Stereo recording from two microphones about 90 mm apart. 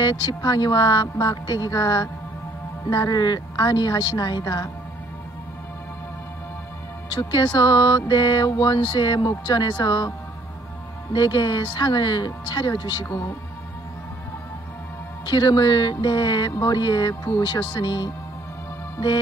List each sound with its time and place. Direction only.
0.0 s speech: 55° left (ahead or behind)
7.1 s speech: 55° left (ahead or behind)
11.1 s speech: 55° left (ahead or behind)
15.2 s speech: 55° left (ahead or behind)